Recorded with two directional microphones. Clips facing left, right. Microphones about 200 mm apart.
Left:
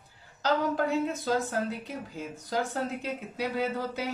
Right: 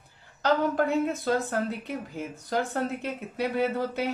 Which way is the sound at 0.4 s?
60° right (ahead or behind).